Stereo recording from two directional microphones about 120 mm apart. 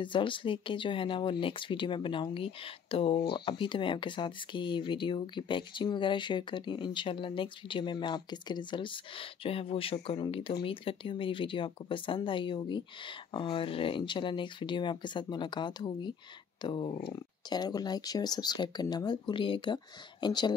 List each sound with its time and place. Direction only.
0.0 s speech: 45° left (ahead or behind)